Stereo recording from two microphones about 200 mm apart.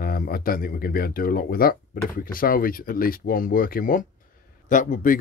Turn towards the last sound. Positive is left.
turn(degrees=45)  # may be behind; listen again after turning